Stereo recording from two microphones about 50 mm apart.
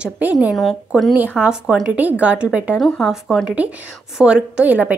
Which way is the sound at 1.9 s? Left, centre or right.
Right.